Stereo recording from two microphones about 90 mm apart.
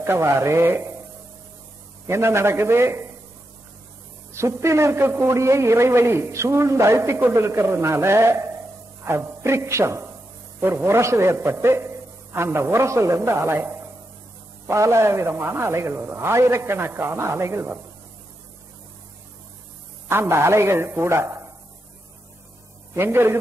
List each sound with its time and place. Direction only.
0.0 s a man's voice: 30° right (ahead or behind)
2.0 s a man's voice: 30° right (ahead or behind)
4.3 s a man's voice: 30° right (ahead or behind)
14.7 s a man's voice: 30° right (ahead or behind)
20.1 s a man's voice: 25° right (ahead or behind)
22.9 s a man's voice: 25° right (ahead or behind)